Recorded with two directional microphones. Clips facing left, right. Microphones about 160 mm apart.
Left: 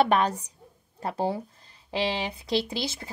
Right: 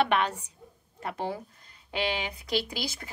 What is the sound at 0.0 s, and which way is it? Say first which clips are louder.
Speech: left 3 dB; 40° left (ahead or behind).